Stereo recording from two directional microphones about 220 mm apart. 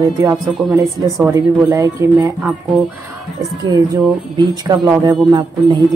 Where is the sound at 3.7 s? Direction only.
20° right (ahead or behind).